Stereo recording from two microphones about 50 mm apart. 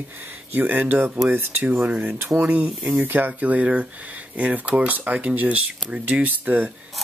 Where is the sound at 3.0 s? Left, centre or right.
Right.